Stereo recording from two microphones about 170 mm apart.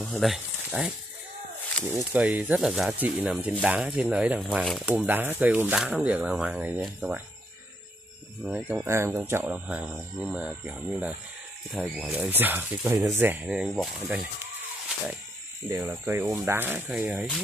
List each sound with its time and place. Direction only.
0.0 s speech: centre (ahead or behind)
2.0 s speech: 10° right (ahead or behind)
8.5 s speech: 5° right (ahead or behind)
15.8 s speech: 10° right (ahead or behind)